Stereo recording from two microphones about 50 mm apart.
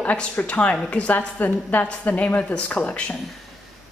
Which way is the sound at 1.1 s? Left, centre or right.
Left.